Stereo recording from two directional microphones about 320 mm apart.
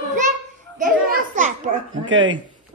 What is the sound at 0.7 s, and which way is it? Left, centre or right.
Children playing, right.